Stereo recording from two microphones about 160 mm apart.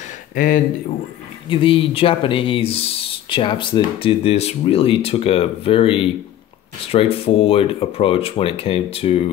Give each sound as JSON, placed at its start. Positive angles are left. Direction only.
{"t": 0.3, "sound": "speech", "side_deg": 60}
{"t": 1.5, "sound": "speech", "side_deg": 35}